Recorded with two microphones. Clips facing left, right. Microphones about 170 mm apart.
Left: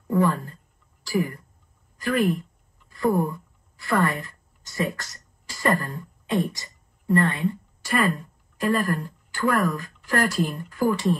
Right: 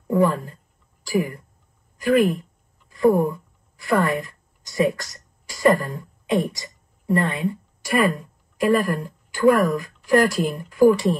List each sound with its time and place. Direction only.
0.1 s a woman's voice: 20° right (ahead or behind)